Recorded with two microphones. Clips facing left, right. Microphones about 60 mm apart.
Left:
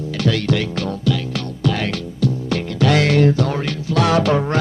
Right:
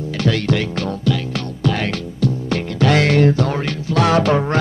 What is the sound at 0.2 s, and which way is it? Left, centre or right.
Music, right.